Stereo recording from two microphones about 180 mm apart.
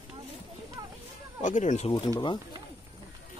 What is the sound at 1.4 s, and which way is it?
Speech, 45° left (ahead or behind).